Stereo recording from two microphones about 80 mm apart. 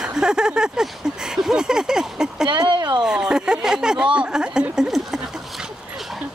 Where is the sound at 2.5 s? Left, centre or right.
Right.